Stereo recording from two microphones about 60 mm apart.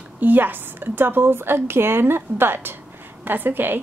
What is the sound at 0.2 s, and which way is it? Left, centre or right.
A woman's voice, right.